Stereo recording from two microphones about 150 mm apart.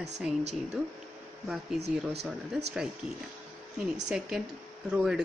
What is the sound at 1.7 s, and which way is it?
Speech, 90° right.